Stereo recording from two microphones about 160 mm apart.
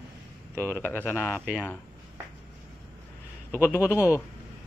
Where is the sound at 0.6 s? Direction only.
15° right (ahead or behind).